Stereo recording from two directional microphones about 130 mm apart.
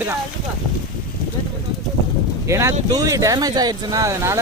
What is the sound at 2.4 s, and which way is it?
Speech, 20° right (ahead or behind).